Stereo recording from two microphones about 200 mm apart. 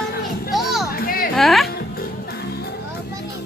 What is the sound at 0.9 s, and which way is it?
Music, 45° left (ahead or behind).